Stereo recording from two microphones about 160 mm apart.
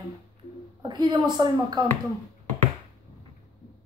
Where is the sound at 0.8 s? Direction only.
25° right (ahead or behind).